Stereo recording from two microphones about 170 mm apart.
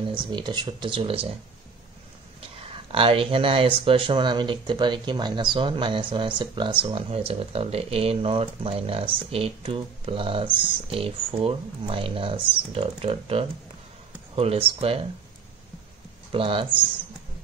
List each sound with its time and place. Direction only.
0.1 s speech: 25° right (ahead or behind)
2.5 s speech: 30° right (ahead or behind)
16.3 s speech: 30° right (ahead or behind)